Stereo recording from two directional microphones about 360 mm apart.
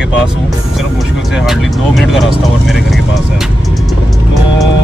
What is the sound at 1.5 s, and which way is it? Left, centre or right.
Speech, centre.